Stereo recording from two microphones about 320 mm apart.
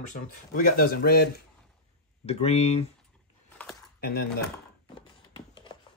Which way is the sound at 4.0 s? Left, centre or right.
Left.